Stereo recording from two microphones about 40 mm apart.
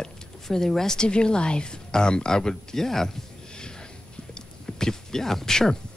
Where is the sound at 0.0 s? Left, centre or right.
Centre.